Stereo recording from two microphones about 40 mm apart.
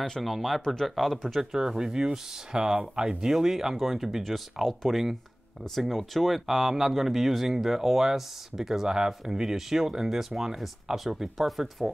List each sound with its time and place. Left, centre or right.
0.2 s speech: centre
1.5 s speech: centre